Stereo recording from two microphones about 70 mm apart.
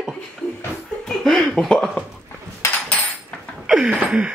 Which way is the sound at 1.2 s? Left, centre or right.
Centre.